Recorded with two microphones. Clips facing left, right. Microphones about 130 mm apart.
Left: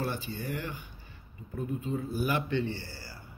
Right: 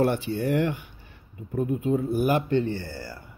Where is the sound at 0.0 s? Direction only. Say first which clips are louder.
Right 11 dB; 70° right (ahead or behind).